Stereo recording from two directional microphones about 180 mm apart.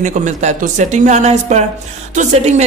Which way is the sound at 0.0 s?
40° right (ahead or behind).